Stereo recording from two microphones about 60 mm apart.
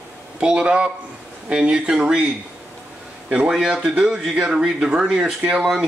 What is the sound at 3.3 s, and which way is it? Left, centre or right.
Speech, centre.